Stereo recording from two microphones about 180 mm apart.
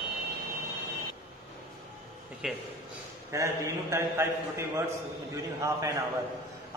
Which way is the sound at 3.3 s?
15° right (ahead or behind).